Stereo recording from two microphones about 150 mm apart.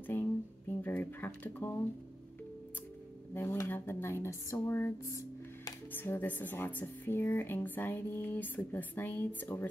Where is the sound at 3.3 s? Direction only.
20° left (ahead or behind).